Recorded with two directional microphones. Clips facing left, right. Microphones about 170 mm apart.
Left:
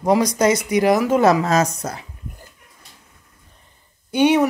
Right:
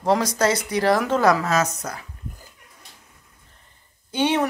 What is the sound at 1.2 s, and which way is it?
Speech, 25° left (ahead or behind).